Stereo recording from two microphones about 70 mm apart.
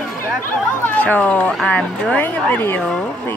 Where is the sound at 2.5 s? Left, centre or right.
Left.